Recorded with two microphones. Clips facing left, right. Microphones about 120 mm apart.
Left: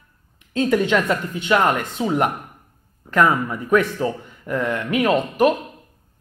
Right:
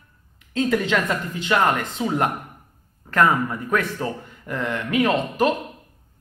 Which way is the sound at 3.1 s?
15° left (ahead or behind).